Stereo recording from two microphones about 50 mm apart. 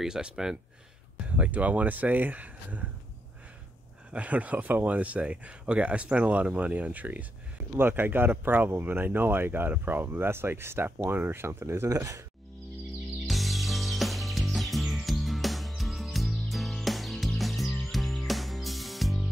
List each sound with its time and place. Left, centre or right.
0.0 s speech: centre
1.2 s speech: right
4.1 s speech: right
7.7 s speech: right
13.3 s music: centre